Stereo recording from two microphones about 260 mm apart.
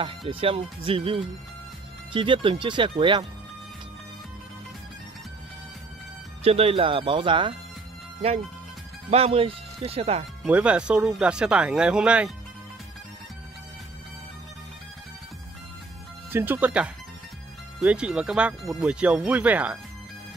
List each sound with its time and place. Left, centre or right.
0.3 s speech: right
6.4 s speech: right
9.1 s speech: right
10.4 s speech: centre
16.3 s speech: centre